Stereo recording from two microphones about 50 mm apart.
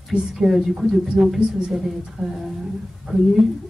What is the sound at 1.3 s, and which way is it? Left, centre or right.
Speech, right.